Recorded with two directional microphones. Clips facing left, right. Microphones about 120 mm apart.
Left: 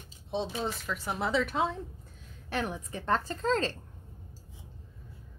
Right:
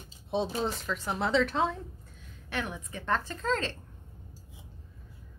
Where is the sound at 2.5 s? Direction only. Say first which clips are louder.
Left 2 dB; 35° left (ahead or behind).